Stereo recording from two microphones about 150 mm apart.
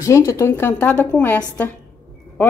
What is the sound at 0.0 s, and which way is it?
A woman's voice, 20° left (ahead or behind).